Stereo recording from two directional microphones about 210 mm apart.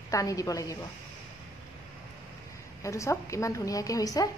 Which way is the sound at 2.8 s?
15° left (ahead or behind).